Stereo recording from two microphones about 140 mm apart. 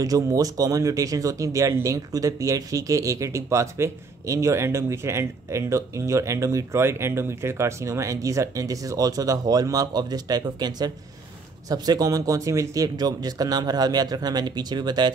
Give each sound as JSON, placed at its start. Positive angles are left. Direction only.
{"t": 0.0, "sound": "speech", "side_deg": -25}